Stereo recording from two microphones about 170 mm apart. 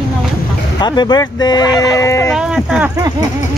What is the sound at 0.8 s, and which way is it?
Speech, 25° left (ahead or behind).